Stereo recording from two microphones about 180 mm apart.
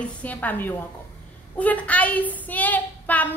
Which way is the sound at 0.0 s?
10° left (ahead or behind).